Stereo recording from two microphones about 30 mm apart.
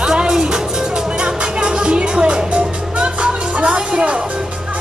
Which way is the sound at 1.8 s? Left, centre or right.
Right.